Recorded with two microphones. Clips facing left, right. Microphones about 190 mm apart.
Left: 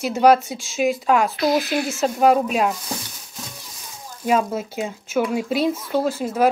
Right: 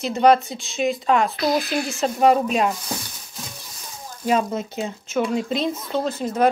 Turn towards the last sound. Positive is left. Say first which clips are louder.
# left 2 dB
turn(degrees=10)  # may be behind; listen again after turning